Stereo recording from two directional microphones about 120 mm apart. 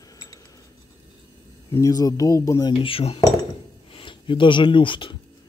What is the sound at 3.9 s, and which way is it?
Speech, 45° left (ahead or behind).